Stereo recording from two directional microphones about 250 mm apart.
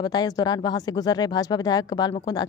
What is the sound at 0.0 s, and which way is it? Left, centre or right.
A woman's voice, centre.